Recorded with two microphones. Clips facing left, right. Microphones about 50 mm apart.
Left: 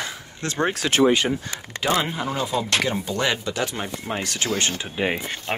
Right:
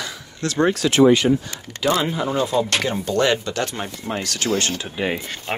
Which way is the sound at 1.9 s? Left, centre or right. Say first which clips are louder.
Right 3 dB; left.